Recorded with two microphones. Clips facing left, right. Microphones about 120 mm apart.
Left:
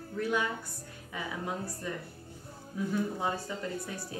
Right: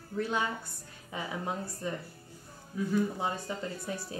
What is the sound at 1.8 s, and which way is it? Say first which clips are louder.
Speech: right 3 dB; 25° right (ahead or behind).